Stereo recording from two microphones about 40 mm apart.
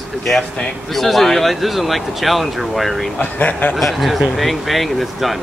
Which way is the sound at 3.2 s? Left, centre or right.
Left.